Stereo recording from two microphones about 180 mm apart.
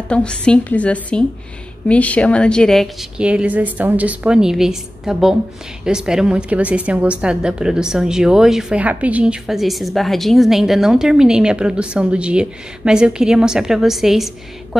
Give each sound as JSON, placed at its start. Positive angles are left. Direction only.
{"t": 0.1, "sound": "a woman's voice", "side_deg": 5}